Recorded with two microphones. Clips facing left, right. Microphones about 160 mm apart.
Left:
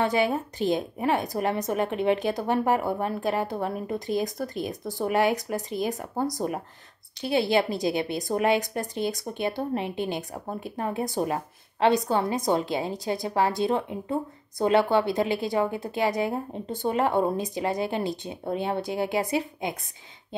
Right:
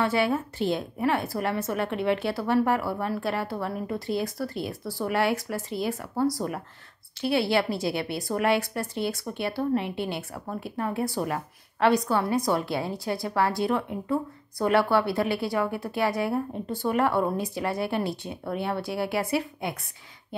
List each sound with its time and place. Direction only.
0.0 s a woman's voice: 15° left (ahead or behind)